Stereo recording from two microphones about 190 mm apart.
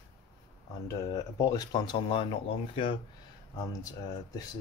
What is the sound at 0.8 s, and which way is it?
Speech, 20° left (ahead or behind).